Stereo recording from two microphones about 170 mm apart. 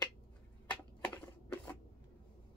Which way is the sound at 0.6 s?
10° left (ahead or behind).